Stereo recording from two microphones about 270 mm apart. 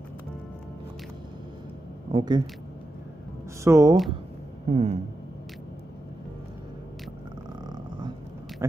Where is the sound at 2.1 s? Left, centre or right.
Centre.